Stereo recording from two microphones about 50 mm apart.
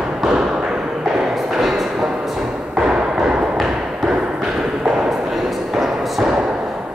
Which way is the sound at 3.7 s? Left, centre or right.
Centre.